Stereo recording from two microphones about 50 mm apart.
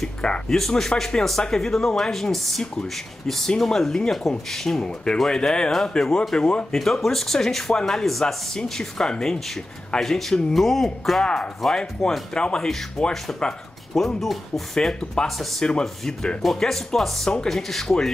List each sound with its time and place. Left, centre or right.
0.2 s speech: centre
0.6 s speech: centre
2.6 s speech: centre